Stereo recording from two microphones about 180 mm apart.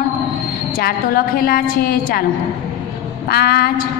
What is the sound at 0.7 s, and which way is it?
A woman's voice, 55° left (ahead or behind).